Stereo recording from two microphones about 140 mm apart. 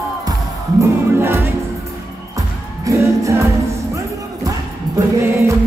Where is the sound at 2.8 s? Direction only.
20° right (ahead or behind).